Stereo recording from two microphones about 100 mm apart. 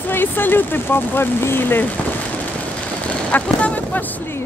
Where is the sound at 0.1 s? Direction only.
20° left (ahead or behind).